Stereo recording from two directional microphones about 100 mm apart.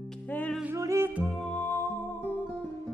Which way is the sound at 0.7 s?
30° right (ahead or behind).